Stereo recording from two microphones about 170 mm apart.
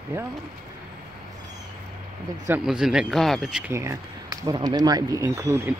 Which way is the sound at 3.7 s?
20° right (ahead or behind).